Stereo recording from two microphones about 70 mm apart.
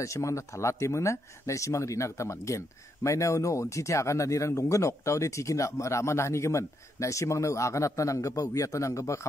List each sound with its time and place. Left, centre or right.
0.0 s speech: left